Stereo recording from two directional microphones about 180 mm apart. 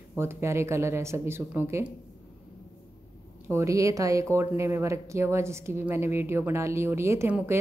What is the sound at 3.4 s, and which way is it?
Speech, 15° right (ahead or behind).